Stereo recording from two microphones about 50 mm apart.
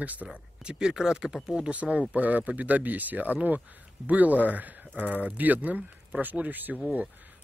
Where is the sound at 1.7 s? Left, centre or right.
Right.